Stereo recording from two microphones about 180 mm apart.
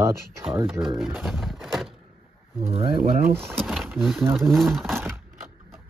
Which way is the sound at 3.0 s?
55° right (ahead or behind).